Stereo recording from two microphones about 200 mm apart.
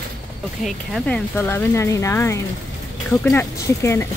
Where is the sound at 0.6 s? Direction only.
5° left (ahead or behind).